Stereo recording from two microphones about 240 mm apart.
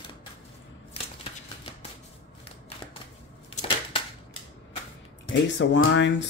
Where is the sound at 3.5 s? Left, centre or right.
Left.